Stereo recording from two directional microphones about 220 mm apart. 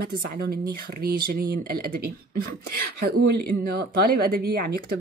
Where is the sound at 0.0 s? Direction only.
45° right (ahead or behind).